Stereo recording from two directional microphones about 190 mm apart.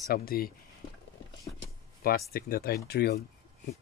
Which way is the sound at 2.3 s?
55° left (ahead or behind).